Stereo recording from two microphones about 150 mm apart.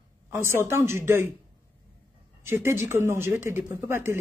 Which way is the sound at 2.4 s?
15° right (ahead or behind).